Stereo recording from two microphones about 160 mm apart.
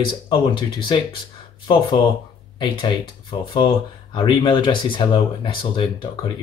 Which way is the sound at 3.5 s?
30° left (ahead or behind).